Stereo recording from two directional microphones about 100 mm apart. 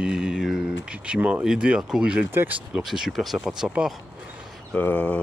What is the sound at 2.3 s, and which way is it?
Speech, 20° right (ahead or behind).